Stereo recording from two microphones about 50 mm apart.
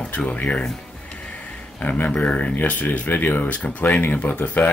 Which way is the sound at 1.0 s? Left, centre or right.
Left.